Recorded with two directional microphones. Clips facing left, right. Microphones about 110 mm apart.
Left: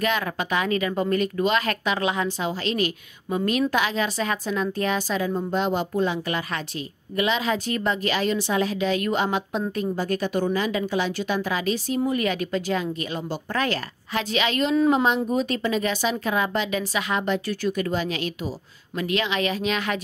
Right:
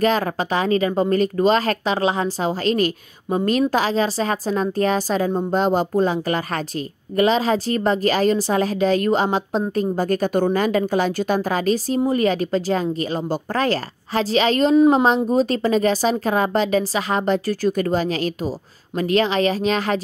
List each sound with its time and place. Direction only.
0.0 s a woman's voice: 35° right (ahead or behind)